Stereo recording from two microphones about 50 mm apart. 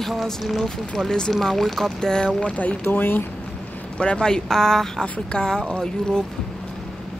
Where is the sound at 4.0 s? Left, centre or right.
Centre.